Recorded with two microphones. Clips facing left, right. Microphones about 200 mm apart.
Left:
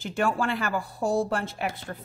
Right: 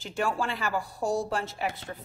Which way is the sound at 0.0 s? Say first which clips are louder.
Left 3 dB; 55° left (ahead or behind).